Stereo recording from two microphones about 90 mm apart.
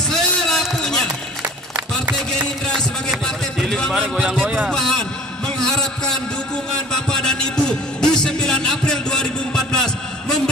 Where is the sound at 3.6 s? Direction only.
10° left (ahead or behind).